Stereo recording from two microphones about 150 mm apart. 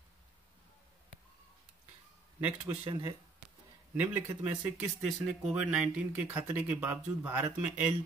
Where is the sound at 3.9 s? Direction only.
10° right (ahead or behind).